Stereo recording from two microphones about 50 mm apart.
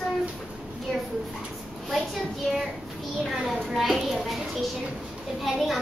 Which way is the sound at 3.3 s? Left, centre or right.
Centre.